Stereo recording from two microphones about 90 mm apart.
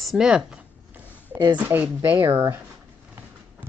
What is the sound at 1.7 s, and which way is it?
Speech, 25° right (ahead or behind).